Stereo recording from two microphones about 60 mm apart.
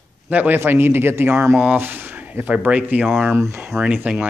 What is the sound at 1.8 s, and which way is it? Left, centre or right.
Speech, right.